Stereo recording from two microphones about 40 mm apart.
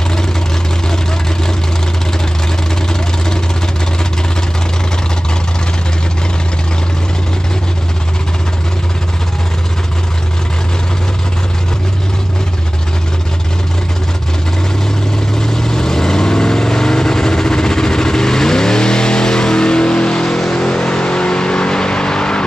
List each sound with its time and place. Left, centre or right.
15.3 s vehicle: centre